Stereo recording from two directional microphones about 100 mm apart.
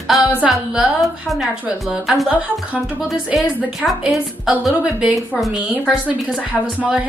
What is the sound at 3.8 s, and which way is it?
A woman's voice, 5° right (ahead or behind).